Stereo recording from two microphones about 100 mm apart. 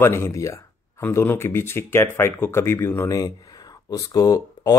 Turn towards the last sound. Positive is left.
turn(degrees=40)  # may be behind; listen again after turning